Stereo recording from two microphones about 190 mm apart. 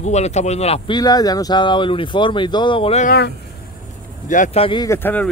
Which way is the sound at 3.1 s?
65° left (ahead or behind).